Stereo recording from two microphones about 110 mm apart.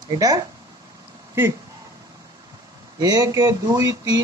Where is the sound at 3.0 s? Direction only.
35° right (ahead or behind).